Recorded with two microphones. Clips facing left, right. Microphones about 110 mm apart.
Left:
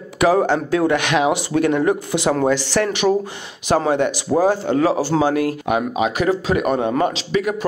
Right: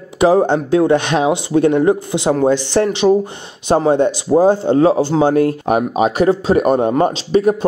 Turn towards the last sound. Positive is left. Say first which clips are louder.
# right 6 dB
turn(degrees=-35)  # may be behind; listen again after turning